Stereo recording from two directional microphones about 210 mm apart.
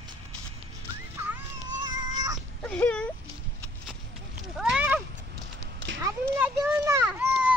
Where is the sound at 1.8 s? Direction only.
15° right (ahead or behind).